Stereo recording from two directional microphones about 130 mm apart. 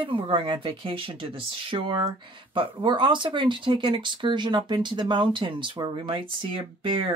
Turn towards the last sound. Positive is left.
turn(degrees=-45)  # may be behind; listen again after turning